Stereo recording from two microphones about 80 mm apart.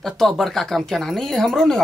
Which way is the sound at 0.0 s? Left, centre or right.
Centre.